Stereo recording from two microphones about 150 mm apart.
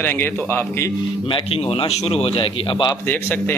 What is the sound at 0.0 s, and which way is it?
Speech, 15° left (ahead or behind).